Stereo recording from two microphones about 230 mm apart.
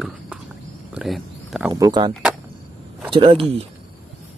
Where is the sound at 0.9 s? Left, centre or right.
Centre.